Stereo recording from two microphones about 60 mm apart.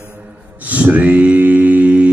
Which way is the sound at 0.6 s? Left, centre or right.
Right.